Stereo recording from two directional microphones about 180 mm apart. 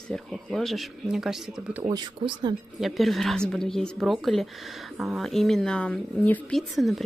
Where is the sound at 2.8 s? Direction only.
Centre (ahead or behind).